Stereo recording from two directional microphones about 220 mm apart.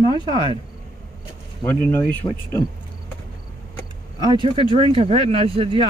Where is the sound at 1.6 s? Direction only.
10° left (ahead or behind).